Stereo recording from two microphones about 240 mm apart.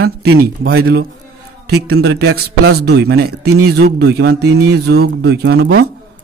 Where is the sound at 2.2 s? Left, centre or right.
Right.